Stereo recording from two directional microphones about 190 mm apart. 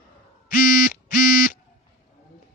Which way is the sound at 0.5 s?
50° left (ahead or behind).